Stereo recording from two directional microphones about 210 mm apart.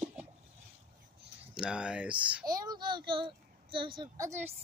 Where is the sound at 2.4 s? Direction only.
20° right (ahead or behind).